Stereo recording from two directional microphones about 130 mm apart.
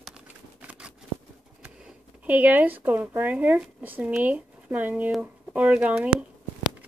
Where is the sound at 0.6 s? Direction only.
10° right (ahead or behind).